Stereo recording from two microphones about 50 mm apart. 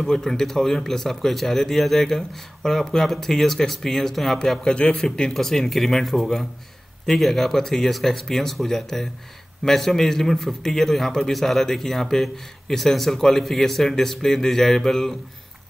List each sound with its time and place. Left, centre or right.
0.0 s a man's voice: centre
4.4 s a man's voice: centre